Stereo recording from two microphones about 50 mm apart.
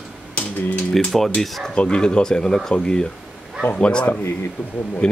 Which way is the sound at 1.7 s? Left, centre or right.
Centre.